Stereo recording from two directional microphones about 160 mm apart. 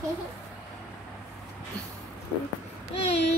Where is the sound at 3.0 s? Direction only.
40° left (ahead or behind).